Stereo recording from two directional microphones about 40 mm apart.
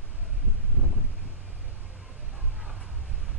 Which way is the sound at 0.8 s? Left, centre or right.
Left.